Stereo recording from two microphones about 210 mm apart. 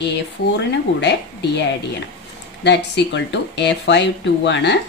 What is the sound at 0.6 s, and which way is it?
A woman's voice, 55° left (ahead or behind).